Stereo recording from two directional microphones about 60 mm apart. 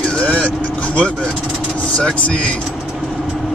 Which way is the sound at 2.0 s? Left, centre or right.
Centre.